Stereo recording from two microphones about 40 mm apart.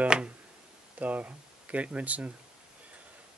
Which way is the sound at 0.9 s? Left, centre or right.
Right.